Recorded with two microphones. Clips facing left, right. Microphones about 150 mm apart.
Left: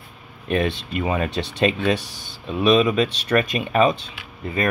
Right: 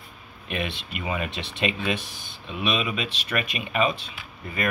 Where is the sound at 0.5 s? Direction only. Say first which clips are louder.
Left 9 dB; 35° left (ahead or behind).